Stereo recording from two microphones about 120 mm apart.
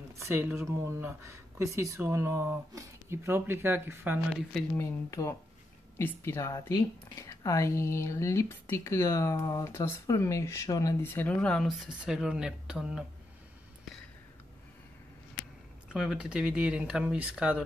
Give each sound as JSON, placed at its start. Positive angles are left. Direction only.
{"t": 0.1, "sound": "a sound", "side_deg": -20}
{"t": 0.6, "sound": "speech", "side_deg": -20}
{"t": 4.7, "sound": "speech", "side_deg": 25}
{"t": 11.1, "sound": "speech", "side_deg": 10}
{"t": 11.6, "sound": "speech", "side_deg": -5}
{"t": 15.9, "sound": "speech", "side_deg": -5}